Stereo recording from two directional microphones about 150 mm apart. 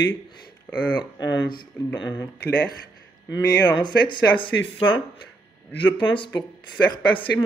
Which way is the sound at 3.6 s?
30° left (ahead or behind).